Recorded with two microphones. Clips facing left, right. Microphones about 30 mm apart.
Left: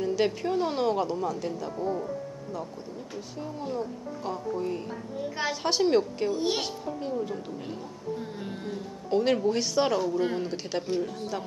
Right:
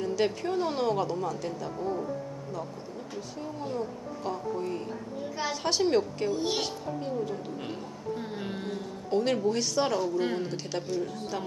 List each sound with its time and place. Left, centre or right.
0.0 s a woman's voice: centre
3.2 s a woman's voice: centre
8.2 s a sound: centre
9.1 s a woman's voice: centre
10.5 s a woman's voice: centre